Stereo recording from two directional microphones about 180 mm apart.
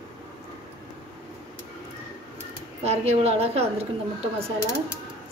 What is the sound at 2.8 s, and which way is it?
A woman's voice, 35° right (ahead or behind).